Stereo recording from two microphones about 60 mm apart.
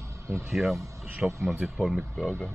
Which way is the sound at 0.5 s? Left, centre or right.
Centre.